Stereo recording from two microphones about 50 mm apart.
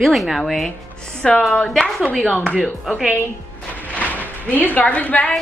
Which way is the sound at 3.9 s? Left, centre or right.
Left.